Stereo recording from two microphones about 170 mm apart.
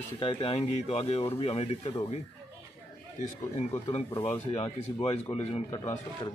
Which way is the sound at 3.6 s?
40° left (ahead or behind).